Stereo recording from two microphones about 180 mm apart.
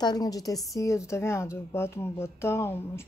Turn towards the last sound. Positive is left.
turn(degrees=15)  # may be behind; listen again after turning